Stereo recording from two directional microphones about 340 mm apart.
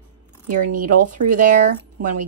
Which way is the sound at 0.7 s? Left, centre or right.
Right.